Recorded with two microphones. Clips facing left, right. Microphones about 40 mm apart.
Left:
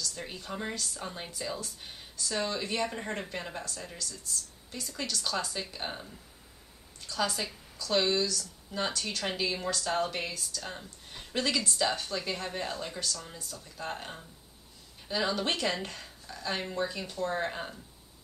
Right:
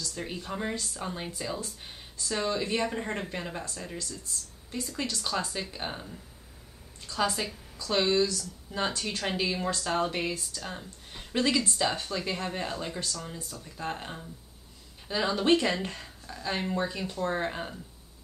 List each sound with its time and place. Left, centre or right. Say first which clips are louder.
0.0 s speech: right 3 dB; centre
4.2 s a woman's voice: left 1 dB; right
9.6 s speech: right 2 dB; right
9.8 s speech: right 2 dB; centre